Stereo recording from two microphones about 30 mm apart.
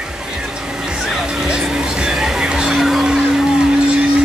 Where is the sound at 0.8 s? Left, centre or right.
Centre.